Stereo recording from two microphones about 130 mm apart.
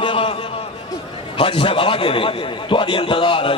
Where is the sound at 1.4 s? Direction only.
45° left (ahead or behind).